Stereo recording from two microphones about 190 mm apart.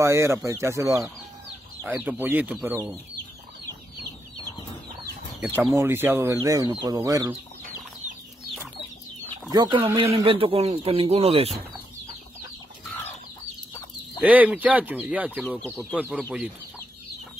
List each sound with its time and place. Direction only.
0.0 s speech: 15° right (ahead or behind)
5.7 s speech: 10° right (ahead or behind)
9.3 s speech: 25° right (ahead or behind)
14.2 s speech: 5° right (ahead or behind)